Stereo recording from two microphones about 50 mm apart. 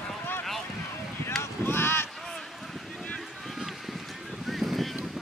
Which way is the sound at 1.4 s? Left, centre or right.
Left.